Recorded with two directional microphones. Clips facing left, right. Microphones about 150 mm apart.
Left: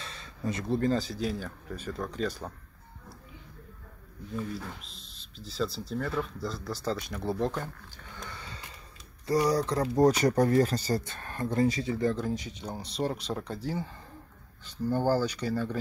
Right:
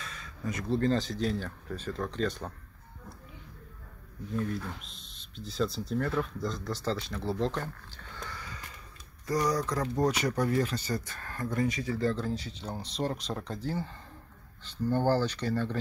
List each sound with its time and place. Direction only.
0.0 s a sound: 30° left (ahead or behind)
0.7 s speech: 15° left (ahead or behind)
4.4 s speech: centre (ahead or behind); by 11.9 s 30° left (ahead or behind)
11.9 s speech: 15° left (ahead or behind)
14.6 s speech: 10° left (ahead or behind)